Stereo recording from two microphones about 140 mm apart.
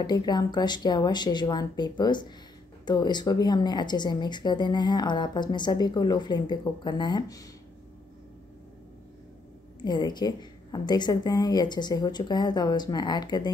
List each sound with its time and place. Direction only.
0.0 s speech: 30° left (ahead or behind)
9.8 s speech: 30° left (ahead or behind)